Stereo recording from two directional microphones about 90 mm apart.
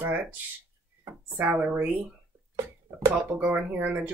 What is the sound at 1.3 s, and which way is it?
Speech, 15° right (ahead or behind).